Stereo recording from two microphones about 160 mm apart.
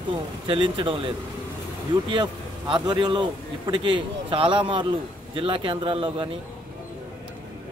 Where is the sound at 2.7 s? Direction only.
30° right (ahead or behind).